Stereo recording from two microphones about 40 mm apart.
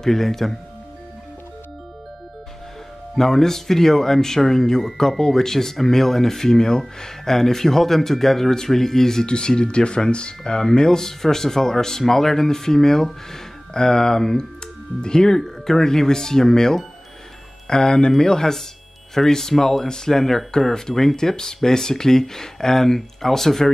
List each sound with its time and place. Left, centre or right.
0.0 s speech: centre
3.2 s speech: centre